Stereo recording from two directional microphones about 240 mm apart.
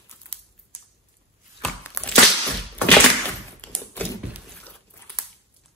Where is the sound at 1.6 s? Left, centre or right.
Centre.